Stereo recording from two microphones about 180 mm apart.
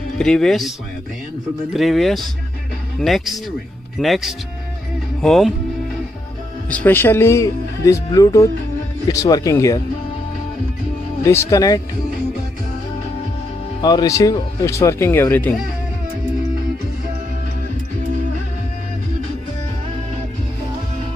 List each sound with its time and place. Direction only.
0.2 s speech: 5° left (ahead or behind)
6.7 s speech: 10° left (ahead or behind)
11.5 s speech: 20° left (ahead or behind)
13.7 s speech: 25° left (ahead or behind)